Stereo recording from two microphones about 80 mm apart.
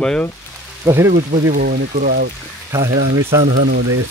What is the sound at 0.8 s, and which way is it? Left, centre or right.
Speech, right.